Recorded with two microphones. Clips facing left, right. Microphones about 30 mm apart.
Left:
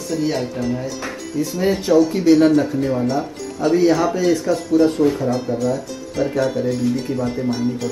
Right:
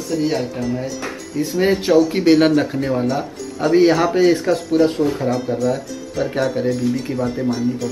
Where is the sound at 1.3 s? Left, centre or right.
Right.